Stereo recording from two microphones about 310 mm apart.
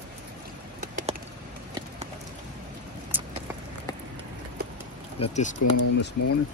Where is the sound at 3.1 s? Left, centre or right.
Centre.